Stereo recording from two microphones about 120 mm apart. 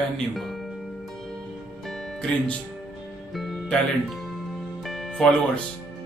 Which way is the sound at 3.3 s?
Centre (ahead or behind).